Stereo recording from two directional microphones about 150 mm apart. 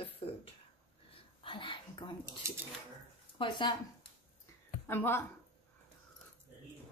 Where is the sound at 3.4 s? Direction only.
30° left (ahead or behind).